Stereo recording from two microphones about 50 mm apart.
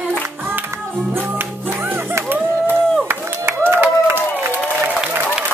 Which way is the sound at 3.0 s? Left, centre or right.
Right.